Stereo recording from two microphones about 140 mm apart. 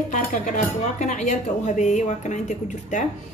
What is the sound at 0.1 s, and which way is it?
A woman's voice, 65° left (ahead or behind).